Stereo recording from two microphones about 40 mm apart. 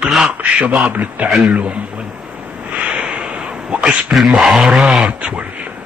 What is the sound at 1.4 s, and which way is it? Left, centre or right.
Speech, right.